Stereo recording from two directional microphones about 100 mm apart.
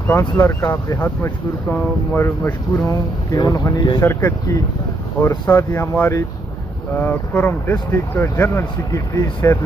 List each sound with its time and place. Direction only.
0.4 s speech: 20° left (ahead or behind)
2.9 s speech: 40° left (ahead or behind)
3.7 s speech: 55° left (ahead or behind)
4.0 s speech: 25° left (ahead or behind)